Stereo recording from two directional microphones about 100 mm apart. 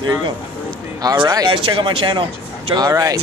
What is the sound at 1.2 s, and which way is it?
Speech, 40° right (ahead or behind).